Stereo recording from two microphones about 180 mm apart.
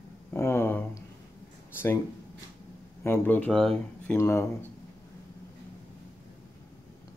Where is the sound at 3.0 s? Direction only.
10° left (ahead or behind).